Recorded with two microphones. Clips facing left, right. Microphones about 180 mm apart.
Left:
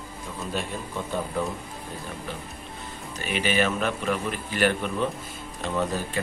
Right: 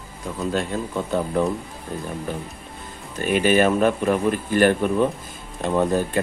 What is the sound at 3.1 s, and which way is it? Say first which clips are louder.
Speech: right 7 dB; 50° right (ahead or behind).